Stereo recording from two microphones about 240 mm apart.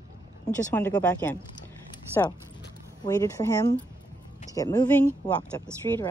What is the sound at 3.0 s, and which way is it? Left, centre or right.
Speech, centre.